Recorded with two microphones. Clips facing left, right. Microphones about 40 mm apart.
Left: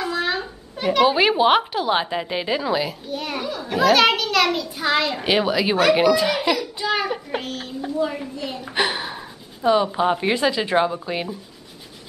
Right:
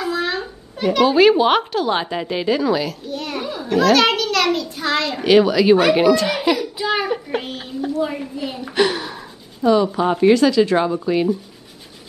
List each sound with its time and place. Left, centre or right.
0.0 s a child's voice: centre
5.8 s a child's voice: centre
8.7 s a child's voice: centre